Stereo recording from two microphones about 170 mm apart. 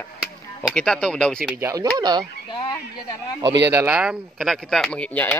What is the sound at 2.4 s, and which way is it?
Speech, 30° left (ahead or behind).